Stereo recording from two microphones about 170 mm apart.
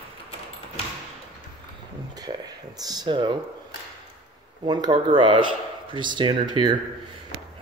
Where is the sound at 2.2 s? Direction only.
25° right (ahead or behind).